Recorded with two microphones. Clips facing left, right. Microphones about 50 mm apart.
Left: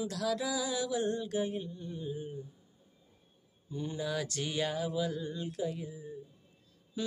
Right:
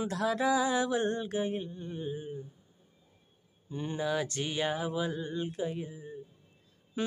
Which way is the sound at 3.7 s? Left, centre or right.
Right.